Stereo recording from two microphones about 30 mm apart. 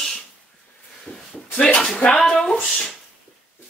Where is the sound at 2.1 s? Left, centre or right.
Centre.